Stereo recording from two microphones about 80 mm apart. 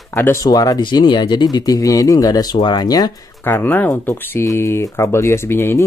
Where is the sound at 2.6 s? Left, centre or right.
Left.